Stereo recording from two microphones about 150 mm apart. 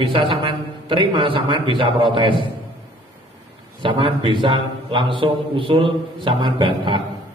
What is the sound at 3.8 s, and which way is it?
A man's voice, 35° right (ahead or behind).